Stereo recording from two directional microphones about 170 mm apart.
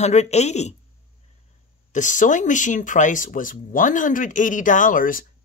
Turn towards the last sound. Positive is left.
turn(degrees=55)  # may be behind; listen again after turning